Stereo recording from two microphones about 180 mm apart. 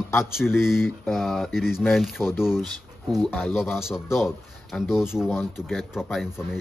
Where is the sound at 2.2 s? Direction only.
10° left (ahead or behind).